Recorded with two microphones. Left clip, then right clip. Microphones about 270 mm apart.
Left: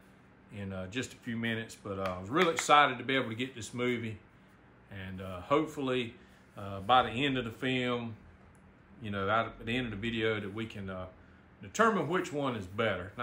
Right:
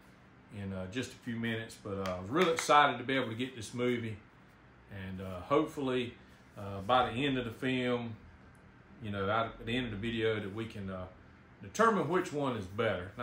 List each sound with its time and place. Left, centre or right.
0.6 s speech: centre
9.0 s speech: centre